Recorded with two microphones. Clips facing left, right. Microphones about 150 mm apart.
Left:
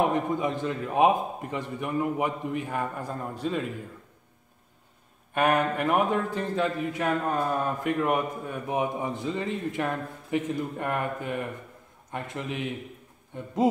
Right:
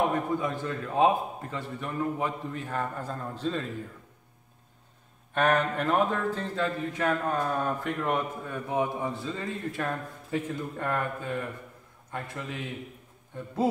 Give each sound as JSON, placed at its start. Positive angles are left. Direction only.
{"t": 0.1, "sound": "speech", "side_deg": 20}
{"t": 5.3, "sound": "a man's voice", "side_deg": 10}